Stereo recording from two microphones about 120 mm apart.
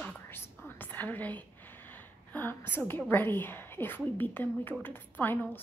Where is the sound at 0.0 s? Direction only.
15° left (ahead or behind).